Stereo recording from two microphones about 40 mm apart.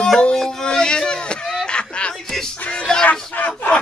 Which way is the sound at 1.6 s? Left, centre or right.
Left.